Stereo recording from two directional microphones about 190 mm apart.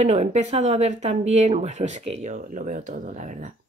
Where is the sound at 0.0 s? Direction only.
35° right (ahead or behind).